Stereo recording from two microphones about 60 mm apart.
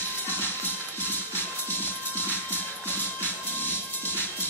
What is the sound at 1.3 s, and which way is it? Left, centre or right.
Music, left.